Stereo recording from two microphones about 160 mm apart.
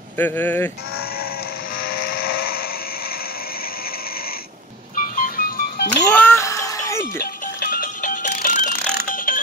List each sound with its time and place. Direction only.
0.2 s speech: 10° left (ahead or behind)
4.9 s music: 60° left (ahead or behind); by 6.0 s 80° left
6.1 s music: 15° left (ahead or behind)
7.2 s music: 65° left (ahead or behind)